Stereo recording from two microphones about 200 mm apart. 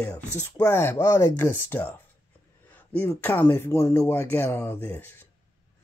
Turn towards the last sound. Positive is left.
turn(degrees=10)  # may be behind; listen again after turning